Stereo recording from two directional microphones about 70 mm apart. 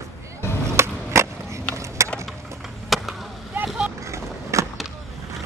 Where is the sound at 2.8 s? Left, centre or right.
Centre.